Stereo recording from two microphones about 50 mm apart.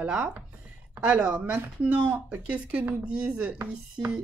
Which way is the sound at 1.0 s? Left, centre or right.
Right.